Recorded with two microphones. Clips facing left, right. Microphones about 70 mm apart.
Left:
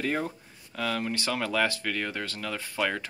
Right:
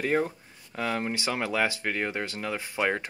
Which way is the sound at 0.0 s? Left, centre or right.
Centre.